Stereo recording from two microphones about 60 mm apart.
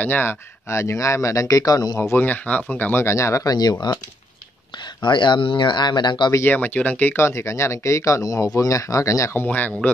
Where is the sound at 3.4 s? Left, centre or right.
Left.